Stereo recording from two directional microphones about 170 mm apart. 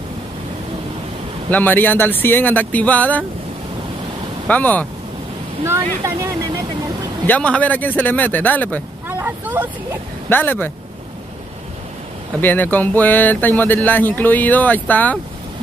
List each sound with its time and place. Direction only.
1.5 s speech: 10° left (ahead or behind)
4.5 s speech: 10° left (ahead or behind)
6.0 s speech: 15° right (ahead or behind)
7.2 s speech: 10° left (ahead or behind)
9.1 s vehicle: 10° right (ahead or behind)
10.3 s speech: 10° left (ahead or behind)
12.4 s speech: 10° left (ahead or behind)